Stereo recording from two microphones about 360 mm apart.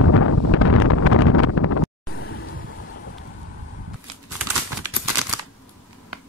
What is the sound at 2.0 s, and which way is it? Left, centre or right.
Vehicle, left.